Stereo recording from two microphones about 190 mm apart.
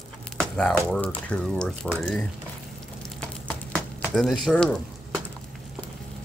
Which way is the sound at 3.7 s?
5° left (ahead or behind).